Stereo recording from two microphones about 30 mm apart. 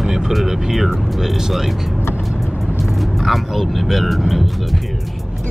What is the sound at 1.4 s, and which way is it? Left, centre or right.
Speech, centre.